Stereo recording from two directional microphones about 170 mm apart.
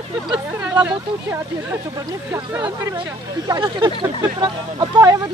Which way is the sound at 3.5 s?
25° right (ahead or behind).